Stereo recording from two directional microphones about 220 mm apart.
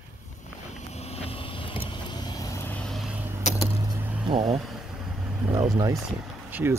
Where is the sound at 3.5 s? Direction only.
35° left (ahead or behind).